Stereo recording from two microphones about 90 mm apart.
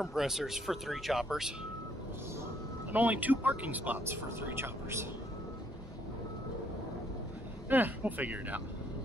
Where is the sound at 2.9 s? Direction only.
20° right (ahead or behind).